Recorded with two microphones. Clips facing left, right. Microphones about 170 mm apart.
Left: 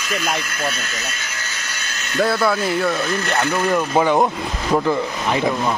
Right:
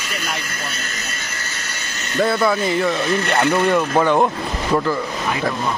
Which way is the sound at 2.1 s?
Centre (ahead or behind).